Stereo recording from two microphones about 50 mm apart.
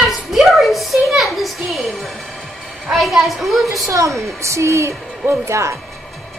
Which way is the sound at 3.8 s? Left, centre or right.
Right.